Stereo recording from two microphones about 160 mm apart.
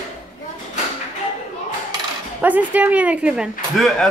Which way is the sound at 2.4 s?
10° right (ahead or behind).